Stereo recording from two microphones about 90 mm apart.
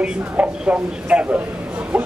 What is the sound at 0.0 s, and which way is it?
A man's voice, 15° right (ahead or behind).